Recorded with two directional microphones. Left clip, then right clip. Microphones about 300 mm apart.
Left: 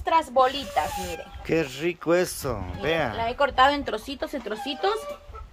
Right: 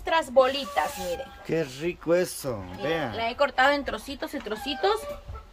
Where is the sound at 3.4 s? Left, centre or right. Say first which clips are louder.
Left 2 dB; left; by 5.0 s centre.